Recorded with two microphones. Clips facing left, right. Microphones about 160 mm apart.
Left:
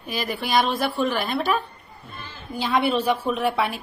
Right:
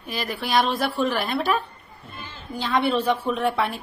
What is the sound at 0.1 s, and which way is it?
A woman's voice, centre (ahead or behind).